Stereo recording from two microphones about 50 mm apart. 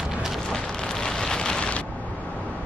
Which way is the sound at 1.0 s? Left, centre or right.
Centre.